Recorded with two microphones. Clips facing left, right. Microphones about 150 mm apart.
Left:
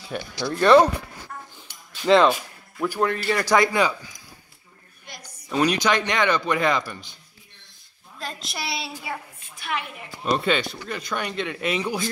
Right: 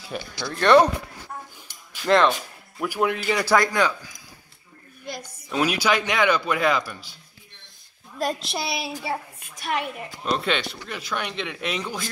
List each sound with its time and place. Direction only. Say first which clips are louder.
0.4 s speech: left 1 dB; 10° left (ahead or behind)
2.0 s speech: left 2 dB; centre (ahead or behind)
2.8 s a man's voice: left 1 dB; 10° right (ahead or behind)
3.5 s speech: left 1 dB; 5° left (ahead or behind)
5.5 s a man's voice: left 1 dB; 5° right (ahead or behind)
8.5 s a woman's voice: right 3 dB; 20° right (ahead or behind); by 9.8 s 40° right (ahead or behind)
10.3 s speech: left 2 dB; centre (ahead or behind)